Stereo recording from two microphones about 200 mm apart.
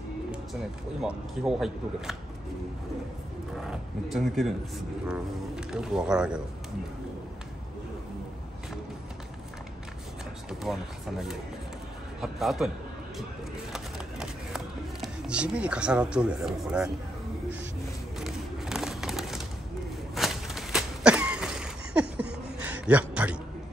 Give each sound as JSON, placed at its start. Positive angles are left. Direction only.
{"t": 1.0, "sound": "speech", "side_deg": 0}
{"t": 3.6, "sound": "speech", "side_deg": 0}
{"t": 10.6, "sound": "a man's voice", "side_deg": 0}
{"t": 13.7, "sound": "a sound", "side_deg": -5}
{"t": 18.2, "sound": "bird", "side_deg": 0}
{"t": 20.2, "sound": "a sound", "side_deg": 0}